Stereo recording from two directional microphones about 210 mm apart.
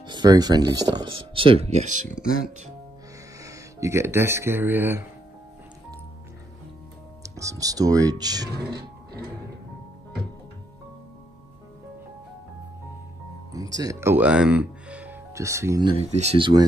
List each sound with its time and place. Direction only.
0.0 s speech: 20° right (ahead or behind)
3.4 s speech: 15° right (ahead or behind)
7.2 s speech: 15° right (ahead or behind)
13.5 s speech: 15° right (ahead or behind)